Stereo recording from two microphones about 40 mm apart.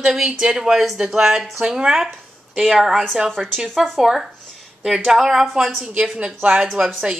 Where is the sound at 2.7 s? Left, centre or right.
Centre.